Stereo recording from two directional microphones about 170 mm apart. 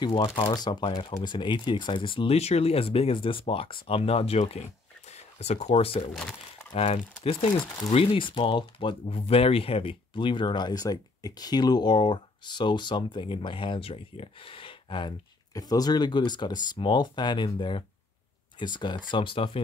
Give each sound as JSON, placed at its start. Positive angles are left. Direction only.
{"t": 0.0, "sound": "speech", "side_deg": 25}